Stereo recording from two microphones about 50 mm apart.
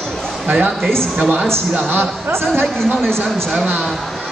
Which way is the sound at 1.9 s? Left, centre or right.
Right.